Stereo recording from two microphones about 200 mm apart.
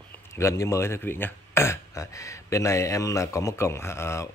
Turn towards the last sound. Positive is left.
turn(degrees=15)  # may be behind; listen again after turning